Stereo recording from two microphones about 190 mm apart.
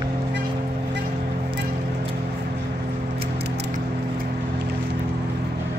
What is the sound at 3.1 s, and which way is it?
Keys jangling, 60° right (ahead or behind).